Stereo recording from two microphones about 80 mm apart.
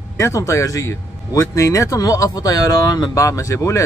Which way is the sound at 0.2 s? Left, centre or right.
Left.